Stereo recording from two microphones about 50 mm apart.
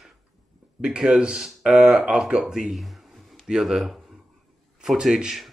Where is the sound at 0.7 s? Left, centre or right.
Centre.